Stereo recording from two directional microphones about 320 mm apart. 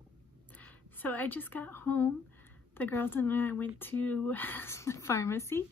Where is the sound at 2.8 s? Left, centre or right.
Centre.